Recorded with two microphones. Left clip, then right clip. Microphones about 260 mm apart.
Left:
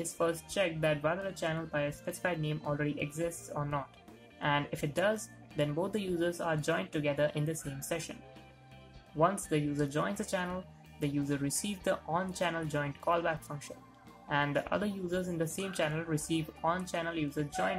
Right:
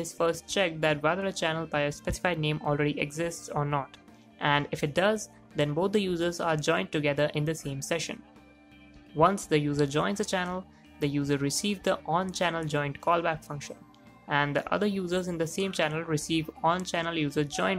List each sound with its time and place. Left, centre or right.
0.0 s speech: centre
9.2 s speech: centre